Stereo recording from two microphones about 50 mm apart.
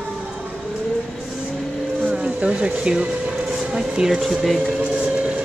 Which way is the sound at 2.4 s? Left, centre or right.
Right.